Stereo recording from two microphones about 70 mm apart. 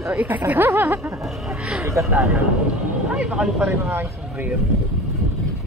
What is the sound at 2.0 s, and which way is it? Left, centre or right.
Speech, right.